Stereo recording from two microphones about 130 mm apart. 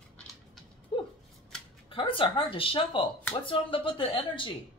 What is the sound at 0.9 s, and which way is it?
Dog, 40° left (ahead or behind).